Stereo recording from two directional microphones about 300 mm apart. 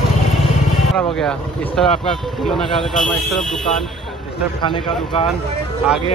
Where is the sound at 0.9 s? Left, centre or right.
Centre.